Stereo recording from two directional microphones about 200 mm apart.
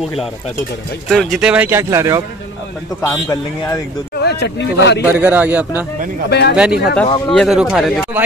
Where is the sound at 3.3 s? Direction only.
15° left (ahead or behind).